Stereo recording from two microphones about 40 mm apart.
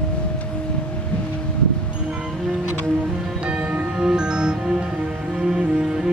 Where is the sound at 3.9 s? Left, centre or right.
Centre.